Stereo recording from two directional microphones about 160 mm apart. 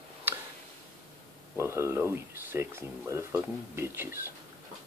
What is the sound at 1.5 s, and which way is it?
Speech, 15° right (ahead or behind).